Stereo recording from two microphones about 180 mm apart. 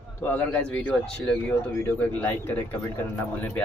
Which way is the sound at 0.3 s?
10° left (ahead or behind).